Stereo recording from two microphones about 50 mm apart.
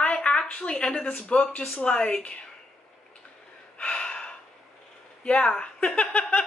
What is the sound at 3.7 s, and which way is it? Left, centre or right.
Gasp, left.